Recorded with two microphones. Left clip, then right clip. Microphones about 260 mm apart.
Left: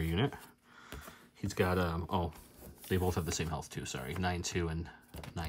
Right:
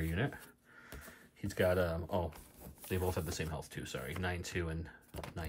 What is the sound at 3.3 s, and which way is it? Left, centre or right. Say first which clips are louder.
Speech: left 4 dB; left.